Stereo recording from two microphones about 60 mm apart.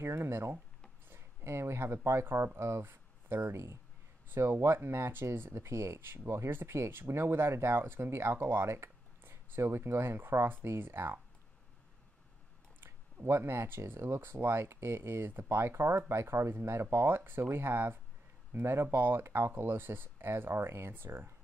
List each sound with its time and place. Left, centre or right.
0.0 s a sound: right
1.0 s speech: right
12.8 s speech: right